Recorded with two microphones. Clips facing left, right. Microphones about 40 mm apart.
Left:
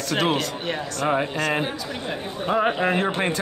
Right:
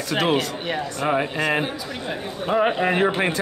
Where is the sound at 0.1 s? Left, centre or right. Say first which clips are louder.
Right 2 dB; centre.